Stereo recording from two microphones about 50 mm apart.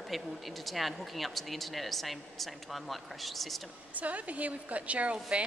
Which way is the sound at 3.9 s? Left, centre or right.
Right.